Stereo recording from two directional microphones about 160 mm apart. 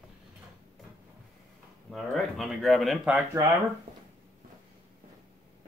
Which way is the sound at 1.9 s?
Centre (ahead or behind).